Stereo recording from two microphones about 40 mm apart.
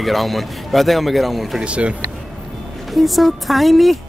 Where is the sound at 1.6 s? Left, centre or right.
Right.